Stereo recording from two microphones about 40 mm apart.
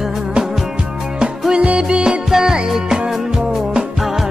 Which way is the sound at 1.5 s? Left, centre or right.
Right.